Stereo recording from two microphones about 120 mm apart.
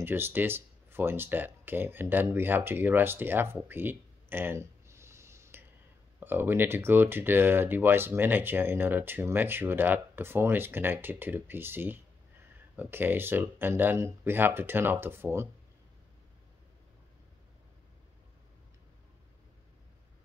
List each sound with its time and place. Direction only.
0.0 s speech: 20° right (ahead or behind)